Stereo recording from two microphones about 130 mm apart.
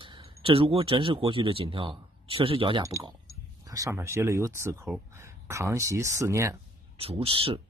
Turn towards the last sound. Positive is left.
turn(degrees=-45)  # may be behind; listen again after turning